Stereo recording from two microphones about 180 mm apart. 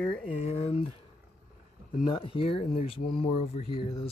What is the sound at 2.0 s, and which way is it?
Speech, 25° left (ahead or behind).